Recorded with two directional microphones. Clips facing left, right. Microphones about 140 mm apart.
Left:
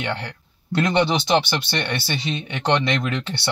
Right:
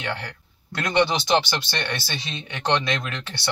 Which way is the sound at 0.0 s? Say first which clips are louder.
Left 3 dB; 25° left (ahead or behind).